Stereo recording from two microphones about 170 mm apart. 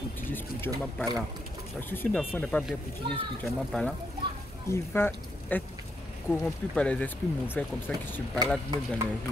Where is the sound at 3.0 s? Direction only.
30° right (ahead or behind).